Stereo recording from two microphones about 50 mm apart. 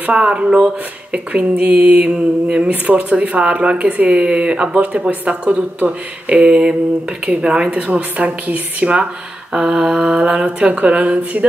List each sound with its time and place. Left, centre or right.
0.1 s mantra: right
9.5 s mantra: centre